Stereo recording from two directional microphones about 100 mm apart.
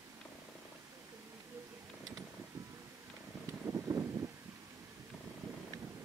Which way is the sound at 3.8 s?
30° right (ahead or behind).